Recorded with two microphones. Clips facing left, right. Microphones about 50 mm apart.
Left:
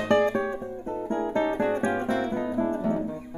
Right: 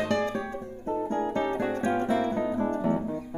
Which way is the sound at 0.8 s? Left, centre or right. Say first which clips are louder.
Right 6 dB; centre.